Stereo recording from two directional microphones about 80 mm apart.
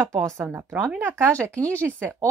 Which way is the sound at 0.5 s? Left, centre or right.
Right.